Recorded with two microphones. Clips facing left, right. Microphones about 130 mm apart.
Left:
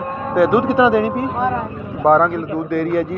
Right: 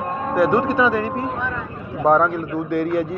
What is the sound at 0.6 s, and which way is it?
Speech, 15° left (ahead or behind).